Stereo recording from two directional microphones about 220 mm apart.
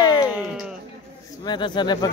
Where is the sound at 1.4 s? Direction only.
20° left (ahead or behind).